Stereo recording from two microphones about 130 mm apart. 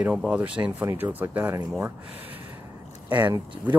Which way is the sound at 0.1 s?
5° right (ahead or behind).